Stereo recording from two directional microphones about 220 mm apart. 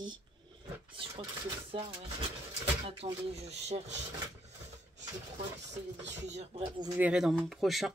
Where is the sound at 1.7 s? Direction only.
25° right (ahead or behind).